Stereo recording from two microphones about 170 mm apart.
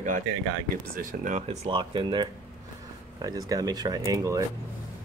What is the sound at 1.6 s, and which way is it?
Speech, 30° right (ahead or behind).